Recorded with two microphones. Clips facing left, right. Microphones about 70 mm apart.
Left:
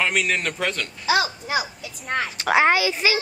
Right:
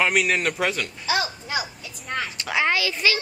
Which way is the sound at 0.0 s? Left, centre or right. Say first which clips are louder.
Right 2 dB; centre.